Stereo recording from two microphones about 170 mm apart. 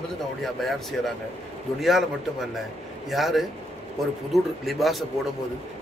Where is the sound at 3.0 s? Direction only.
Centre (ahead or behind).